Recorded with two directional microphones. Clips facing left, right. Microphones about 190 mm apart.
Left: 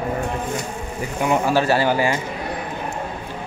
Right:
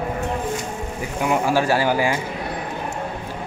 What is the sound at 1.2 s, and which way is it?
Speech, 10° right (ahead or behind).